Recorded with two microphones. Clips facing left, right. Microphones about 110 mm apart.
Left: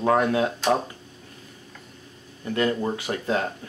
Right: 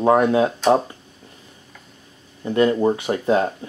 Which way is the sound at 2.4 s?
25° right (ahead or behind).